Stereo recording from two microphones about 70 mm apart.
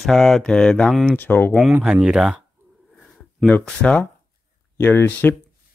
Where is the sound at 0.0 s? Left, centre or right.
Centre.